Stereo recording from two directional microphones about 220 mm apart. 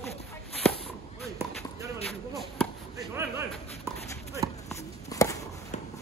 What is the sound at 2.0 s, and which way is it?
Basketball bounce, centre (ahead or behind).